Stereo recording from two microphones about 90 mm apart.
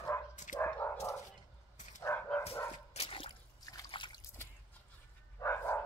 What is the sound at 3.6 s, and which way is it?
Trickle, 45° left (ahead or behind).